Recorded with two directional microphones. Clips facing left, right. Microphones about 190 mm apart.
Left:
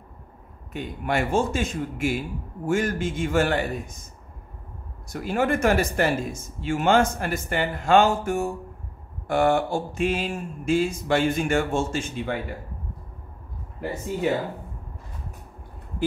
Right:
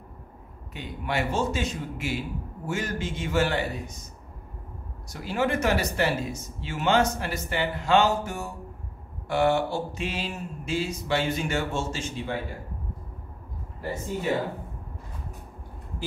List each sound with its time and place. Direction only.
0.7 s speech: 50° left (ahead or behind)
5.1 s speech: 50° left (ahead or behind)